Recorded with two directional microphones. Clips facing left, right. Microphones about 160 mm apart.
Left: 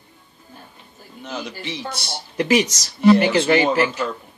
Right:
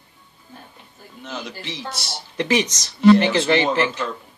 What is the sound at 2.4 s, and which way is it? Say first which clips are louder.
A man's voice: left 3 dB; 10° left (ahead or behind).